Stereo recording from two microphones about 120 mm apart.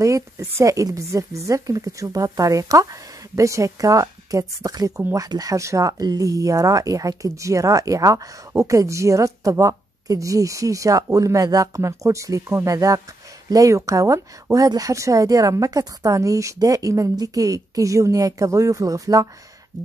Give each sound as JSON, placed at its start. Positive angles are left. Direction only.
{"t": 0.0, "sound": "speech", "side_deg": -25}